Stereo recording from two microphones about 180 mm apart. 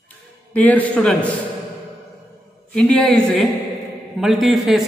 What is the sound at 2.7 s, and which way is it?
A woman's voice, 5° left (ahead or behind).